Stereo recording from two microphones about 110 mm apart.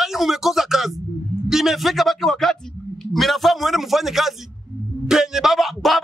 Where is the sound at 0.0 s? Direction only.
Centre (ahead or behind).